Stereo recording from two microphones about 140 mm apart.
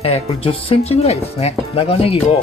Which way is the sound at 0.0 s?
45° left (ahead or behind).